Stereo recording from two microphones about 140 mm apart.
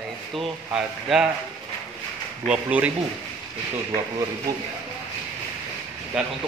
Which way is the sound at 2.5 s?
10° right (ahead or behind).